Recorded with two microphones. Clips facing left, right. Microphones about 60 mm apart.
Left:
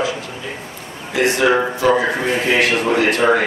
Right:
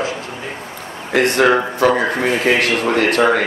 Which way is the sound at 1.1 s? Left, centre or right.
Right.